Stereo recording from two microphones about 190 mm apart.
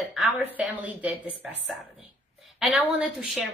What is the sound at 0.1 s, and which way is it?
A woman's voice, 5° right (ahead or behind).